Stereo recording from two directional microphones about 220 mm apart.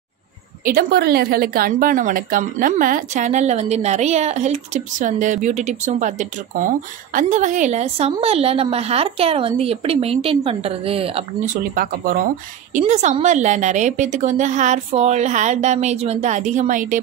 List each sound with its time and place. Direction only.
0.7 s a woman's voice: 45° right (ahead or behind); by 11.5 s 25° right (ahead or behind)
11.7 s a woman's voice: 40° right (ahead or behind)